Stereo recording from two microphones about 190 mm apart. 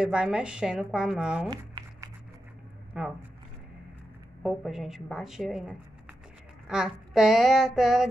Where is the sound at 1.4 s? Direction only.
20° right (ahead or behind).